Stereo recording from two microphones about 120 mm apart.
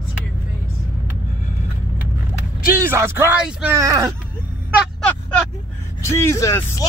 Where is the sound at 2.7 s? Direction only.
20° right (ahead or behind).